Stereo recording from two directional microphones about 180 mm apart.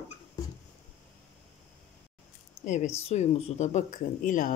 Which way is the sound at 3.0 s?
35° left (ahead or behind).